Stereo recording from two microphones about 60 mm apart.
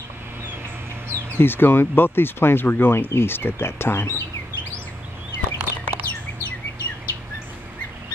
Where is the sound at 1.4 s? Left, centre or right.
Left.